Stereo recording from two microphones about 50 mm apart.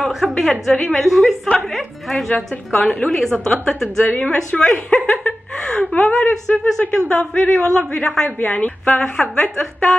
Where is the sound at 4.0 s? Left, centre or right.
Left.